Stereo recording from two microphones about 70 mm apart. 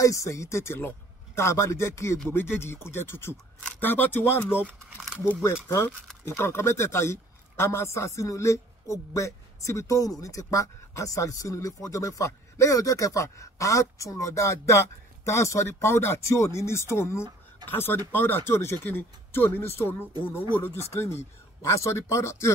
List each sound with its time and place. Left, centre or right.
0.0 s speech: left